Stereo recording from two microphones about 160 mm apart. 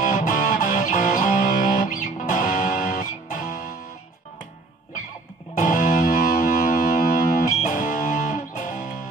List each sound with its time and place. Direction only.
0.0 s music: 60° left (ahead or behind)
5.6 s music: 55° left (ahead or behind)